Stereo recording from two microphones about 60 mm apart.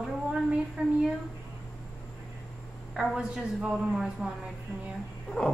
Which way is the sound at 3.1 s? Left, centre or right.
Centre.